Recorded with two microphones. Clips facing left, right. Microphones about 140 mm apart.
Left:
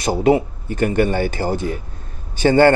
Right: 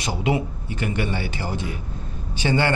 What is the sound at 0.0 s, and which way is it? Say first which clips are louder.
Speech: left 8 dB; 45° left (ahead or behind).